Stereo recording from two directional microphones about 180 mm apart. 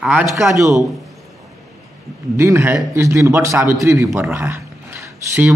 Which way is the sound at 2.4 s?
15° right (ahead or behind).